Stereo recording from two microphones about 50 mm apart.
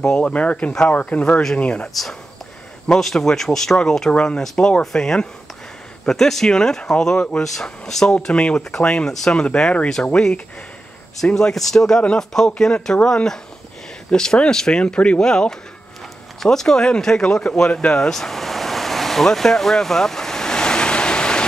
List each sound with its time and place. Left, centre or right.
0.0 s speech: centre
0.3 s speech: left
3.0 s speech: centre
17.9 s a sound: centre